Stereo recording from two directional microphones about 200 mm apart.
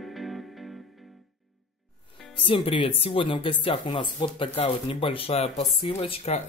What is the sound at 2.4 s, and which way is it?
Speech, 25° left (ahead or behind).